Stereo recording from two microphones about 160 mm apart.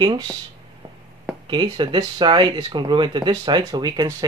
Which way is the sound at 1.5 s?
30° right (ahead or behind).